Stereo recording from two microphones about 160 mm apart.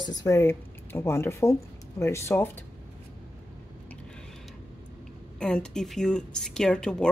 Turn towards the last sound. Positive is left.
turn(degrees=5)  # may be behind; listen again after turning